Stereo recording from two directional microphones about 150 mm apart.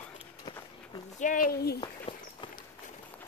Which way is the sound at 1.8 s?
35° left (ahead or behind).